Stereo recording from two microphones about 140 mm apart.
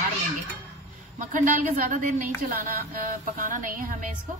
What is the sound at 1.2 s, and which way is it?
A woman's voice, 70° right (ahead or behind).